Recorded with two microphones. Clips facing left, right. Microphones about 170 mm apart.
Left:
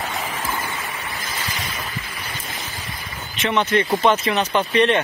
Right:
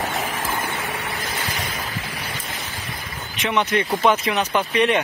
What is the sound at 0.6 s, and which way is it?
Vehicle, 65° right (ahead or behind).